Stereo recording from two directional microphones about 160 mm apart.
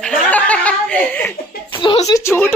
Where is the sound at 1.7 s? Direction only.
35° left (ahead or behind).